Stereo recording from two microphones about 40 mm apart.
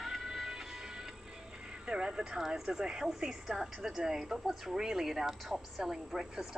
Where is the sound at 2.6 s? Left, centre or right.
Centre.